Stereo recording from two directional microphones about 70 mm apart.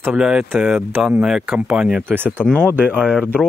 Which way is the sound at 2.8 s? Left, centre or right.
Centre.